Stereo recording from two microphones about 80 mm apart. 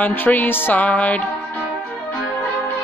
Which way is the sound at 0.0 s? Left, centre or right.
Left.